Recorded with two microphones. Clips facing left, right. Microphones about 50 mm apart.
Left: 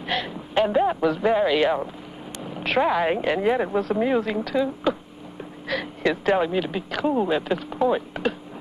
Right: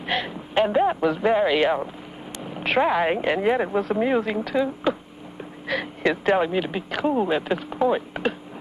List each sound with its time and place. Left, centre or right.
0.0 s speech: centre